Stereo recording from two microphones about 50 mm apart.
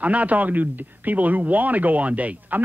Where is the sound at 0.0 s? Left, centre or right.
Right.